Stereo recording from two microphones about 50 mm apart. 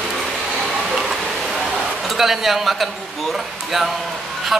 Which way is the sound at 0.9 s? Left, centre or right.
Centre.